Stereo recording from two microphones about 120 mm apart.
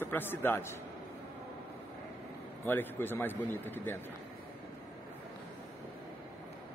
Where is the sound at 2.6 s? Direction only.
15° left (ahead or behind).